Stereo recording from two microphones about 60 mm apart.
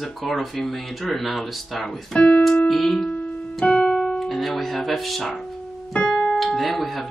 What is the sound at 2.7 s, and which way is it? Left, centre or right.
Speech, centre.